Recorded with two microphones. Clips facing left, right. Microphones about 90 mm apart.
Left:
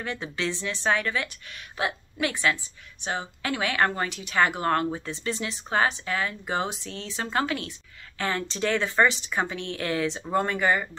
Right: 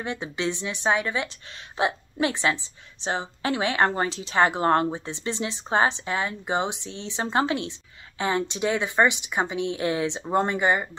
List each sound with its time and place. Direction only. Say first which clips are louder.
0.0 s a woman's voice: right 2 dB; 20° right (ahead or behind)